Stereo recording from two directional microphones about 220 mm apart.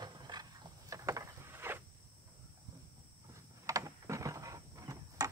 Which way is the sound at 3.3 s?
15° right (ahead or behind).